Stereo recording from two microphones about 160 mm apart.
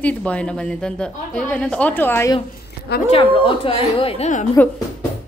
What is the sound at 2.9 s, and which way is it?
Speech, 90° left.